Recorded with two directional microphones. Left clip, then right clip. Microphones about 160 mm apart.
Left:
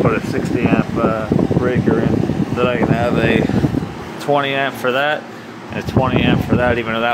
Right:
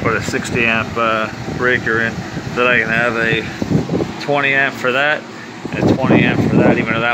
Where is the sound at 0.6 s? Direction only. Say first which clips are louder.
Right 3 dB; 15° right (ahead or behind).